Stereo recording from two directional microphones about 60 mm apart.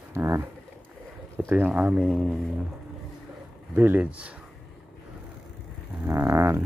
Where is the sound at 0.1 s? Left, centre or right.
Right.